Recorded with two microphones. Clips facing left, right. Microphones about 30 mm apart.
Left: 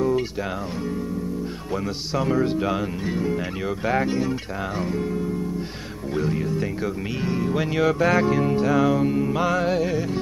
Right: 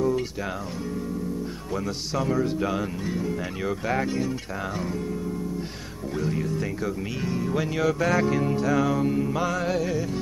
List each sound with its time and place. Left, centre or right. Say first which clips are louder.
2.1 s music: left 3 dB; left
6.1 s speech: left 3 dB; centre
7.2 s music: left 3 dB; left